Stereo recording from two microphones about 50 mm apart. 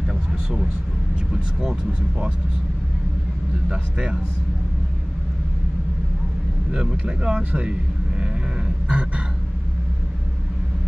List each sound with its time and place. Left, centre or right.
1.3 s speech: centre
3.6 s speech: centre
6.7 s speech: centre
8.8 s a sound: right